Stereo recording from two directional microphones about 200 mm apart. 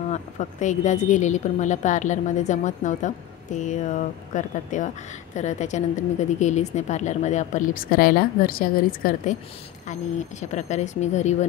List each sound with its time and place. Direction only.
0.1 s a woman's voice: 35° left (ahead or behind)